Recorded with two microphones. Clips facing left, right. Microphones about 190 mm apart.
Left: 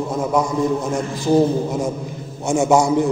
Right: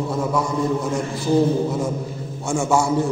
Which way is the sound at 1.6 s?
15° left (ahead or behind).